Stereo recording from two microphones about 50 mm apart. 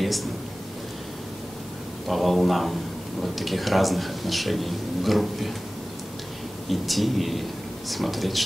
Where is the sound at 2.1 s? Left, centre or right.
Centre.